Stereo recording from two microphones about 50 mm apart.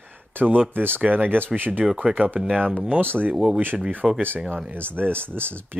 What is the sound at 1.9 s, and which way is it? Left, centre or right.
Speech, right.